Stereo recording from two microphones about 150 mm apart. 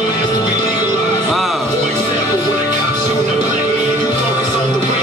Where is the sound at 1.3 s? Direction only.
Centre (ahead or behind).